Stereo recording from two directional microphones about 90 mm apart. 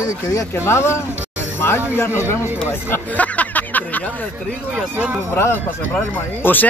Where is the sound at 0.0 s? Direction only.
40° left (ahead or behind); by 4.3 s 20° left (ahead or behind).